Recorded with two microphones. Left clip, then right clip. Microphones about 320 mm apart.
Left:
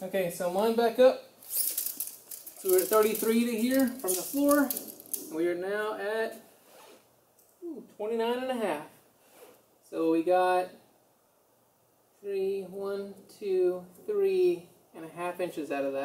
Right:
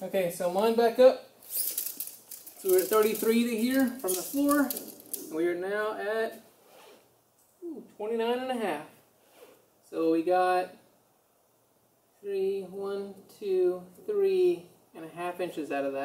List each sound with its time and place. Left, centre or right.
0.0 s speech: centre
8.0 s speech: centre
9.8 s speech: centre
12.3 s speech: centre